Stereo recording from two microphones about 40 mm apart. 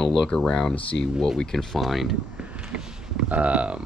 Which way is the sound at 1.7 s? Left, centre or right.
Centre.